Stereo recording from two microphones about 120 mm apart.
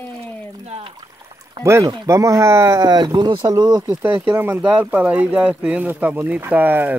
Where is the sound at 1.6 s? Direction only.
25° right (ahead or behind).